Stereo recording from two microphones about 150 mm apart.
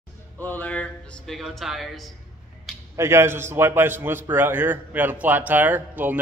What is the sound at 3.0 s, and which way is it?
A man's voice, 15° right (ahead or behind).